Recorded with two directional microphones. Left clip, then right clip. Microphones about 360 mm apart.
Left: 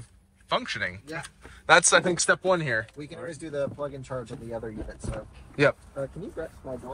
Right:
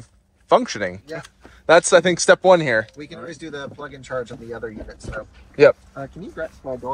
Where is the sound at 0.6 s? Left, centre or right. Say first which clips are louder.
Right 7 dB; centre.